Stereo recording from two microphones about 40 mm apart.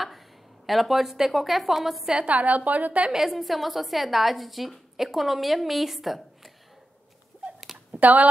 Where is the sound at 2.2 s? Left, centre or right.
Right.